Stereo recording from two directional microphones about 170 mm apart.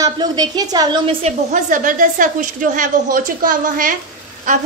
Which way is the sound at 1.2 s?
45° right (ahead or behind).